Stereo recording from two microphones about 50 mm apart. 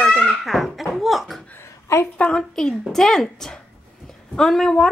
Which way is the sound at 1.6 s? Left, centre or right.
Left.